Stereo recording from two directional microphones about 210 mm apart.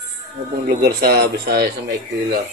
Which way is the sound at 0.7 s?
45° right (ahead or behind).